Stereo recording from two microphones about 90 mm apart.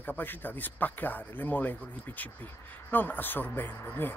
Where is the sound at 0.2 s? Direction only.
20° left (ahead or behind).